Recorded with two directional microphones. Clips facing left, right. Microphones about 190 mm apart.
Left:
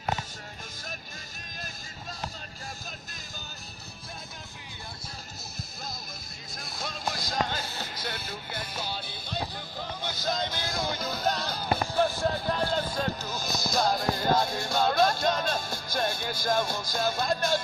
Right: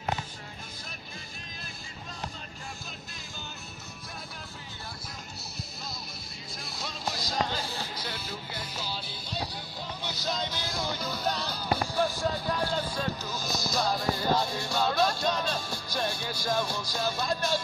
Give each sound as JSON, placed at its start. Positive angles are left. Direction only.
{"t": 6.6, "sound": "music", "side_deg": 50}